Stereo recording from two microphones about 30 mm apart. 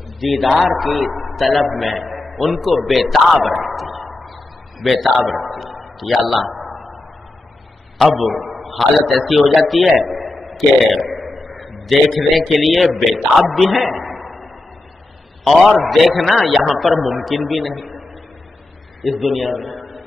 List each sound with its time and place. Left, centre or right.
0.2 s a man's voice: centre
4.7 s a sound: centre
8.2 s a man's voice: centre
13.5 s a sound: centre
15.8 s a man's voice: centre
19.0 s a man's voice: centre